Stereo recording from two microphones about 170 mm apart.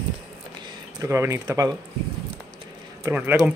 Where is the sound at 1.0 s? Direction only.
15° right (ahead or behind).